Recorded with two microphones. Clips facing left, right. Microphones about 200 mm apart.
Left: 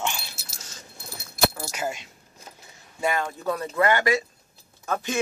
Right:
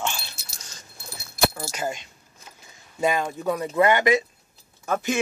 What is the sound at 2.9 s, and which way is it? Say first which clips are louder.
Speech: right 3 dB; 15° right (ahead or behind).